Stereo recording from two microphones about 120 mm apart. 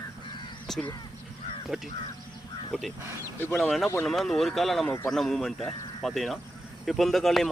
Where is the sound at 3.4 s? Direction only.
20° left (ahead or behind).